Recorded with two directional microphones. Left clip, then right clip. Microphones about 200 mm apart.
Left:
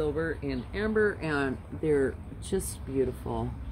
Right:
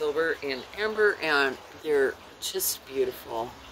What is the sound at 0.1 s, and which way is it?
Speech, 5° right (ahead or behind).